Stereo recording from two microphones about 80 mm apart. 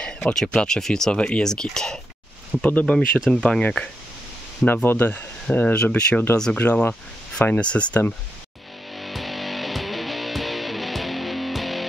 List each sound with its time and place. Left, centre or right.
0.0 s speech: centre
3.6 s speech: centre
8.9 s music: centre